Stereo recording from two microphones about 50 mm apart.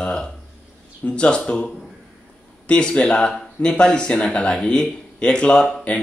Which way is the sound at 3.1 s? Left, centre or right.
Centre.